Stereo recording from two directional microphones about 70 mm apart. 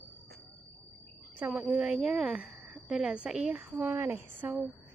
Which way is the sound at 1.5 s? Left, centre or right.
Right.